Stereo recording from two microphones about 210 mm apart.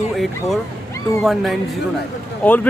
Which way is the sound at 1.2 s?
Centre (ahead or behind).